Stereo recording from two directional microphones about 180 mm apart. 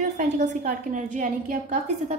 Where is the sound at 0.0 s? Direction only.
40° right (ahead or behind).